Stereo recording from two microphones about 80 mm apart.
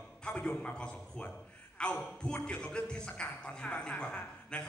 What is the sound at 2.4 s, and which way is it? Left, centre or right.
A man's voice, centre.